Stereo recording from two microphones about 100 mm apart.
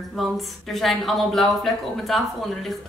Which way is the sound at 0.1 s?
Centre (ahead or behind).